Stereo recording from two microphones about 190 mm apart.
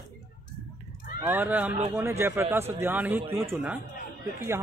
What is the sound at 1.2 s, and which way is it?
Speech, 10° right (ahead or behind).